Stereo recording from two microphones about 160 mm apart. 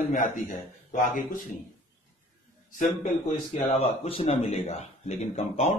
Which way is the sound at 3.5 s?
40° left (ahead or behind).